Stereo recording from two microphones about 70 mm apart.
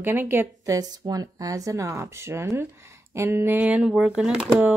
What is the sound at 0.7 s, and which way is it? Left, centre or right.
A woman's voice, right.